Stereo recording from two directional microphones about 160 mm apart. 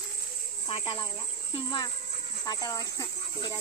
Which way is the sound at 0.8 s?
30° left (ahead or behind).